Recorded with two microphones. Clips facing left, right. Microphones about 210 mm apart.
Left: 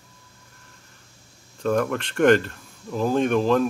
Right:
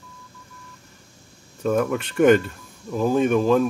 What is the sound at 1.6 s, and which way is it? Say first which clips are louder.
Speech: right 1 dB; 5° right (ahead or behind).